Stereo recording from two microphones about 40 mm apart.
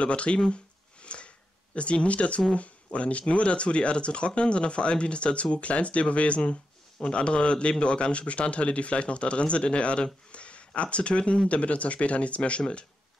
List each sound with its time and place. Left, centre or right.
0.0 s speech: left
1.0 s a sound: left
1.8 s speech: left